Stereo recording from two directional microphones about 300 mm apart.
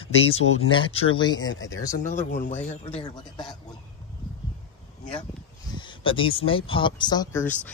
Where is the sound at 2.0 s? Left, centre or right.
Left.